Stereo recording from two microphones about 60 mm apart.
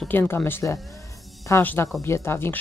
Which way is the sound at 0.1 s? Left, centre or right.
Left.